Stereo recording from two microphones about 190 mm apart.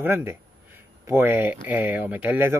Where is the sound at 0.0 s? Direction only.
10° right (ahead or behind).